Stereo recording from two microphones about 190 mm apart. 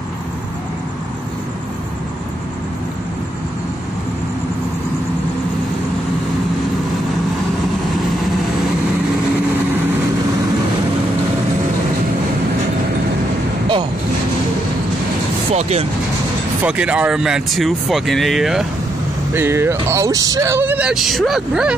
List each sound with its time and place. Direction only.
15.5 s speech: 35° right (ahead or behind)
16.6 s speech: 5° right (ahead or behind)
19.3 s speech: 15° right (ahead or behind)